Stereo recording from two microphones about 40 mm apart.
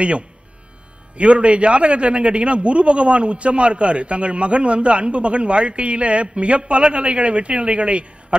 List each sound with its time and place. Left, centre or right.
1.1 s a man's voice: right